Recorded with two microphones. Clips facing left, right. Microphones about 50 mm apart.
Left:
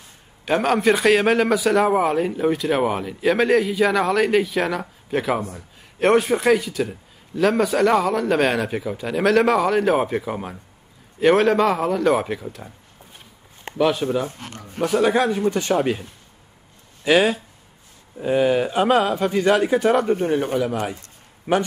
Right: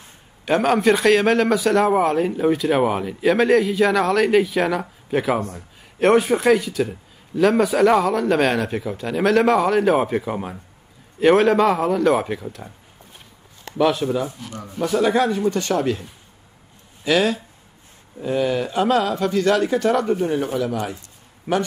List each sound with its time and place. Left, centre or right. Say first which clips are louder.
0.5 s speech: right 1 dB; centre
13.7 s speech: right 1 dB; centre
14.2 s speech: right 2 dB; left
14.9 s speech: even; centre
17.0 s speech: left 2 dB; centre
21.5 s speech: left 1 dB; centre